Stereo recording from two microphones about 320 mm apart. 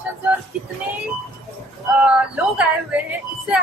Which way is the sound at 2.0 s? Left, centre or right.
Centre.